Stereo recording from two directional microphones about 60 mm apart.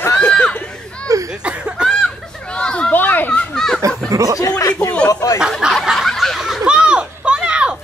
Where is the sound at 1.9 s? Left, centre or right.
Centre.